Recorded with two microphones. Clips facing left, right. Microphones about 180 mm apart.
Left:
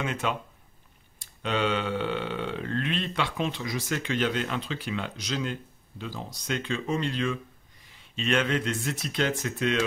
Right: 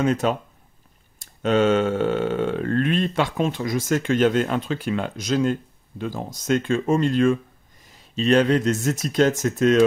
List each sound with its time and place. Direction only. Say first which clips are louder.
0.0 s speech: right 9 dB; 40° right (ahead or behind)